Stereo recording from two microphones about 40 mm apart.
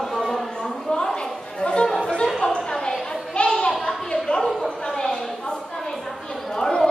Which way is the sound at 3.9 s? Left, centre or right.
Centre.